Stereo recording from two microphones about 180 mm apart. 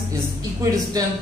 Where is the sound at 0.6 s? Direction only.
20° right (ahead or behind).